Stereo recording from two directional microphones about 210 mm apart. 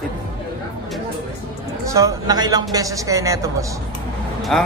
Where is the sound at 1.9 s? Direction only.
15° right (ahead or behind).